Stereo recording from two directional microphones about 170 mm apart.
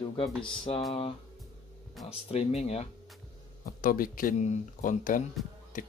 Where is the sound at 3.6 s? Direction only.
55° left (ahead or behind).